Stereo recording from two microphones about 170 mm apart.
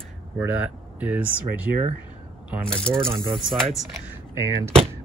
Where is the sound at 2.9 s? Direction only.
15° right (ahead or behind).